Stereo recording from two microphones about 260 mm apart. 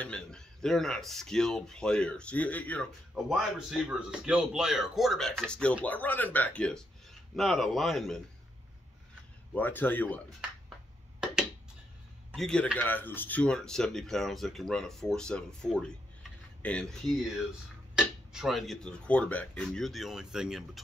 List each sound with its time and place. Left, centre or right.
0.0 s speech: centre
9.5 s a man's voice: centre
12.3 s speech: centre
17.9 s speech: centre